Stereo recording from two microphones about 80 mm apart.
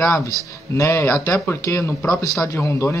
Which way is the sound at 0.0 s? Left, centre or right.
Left.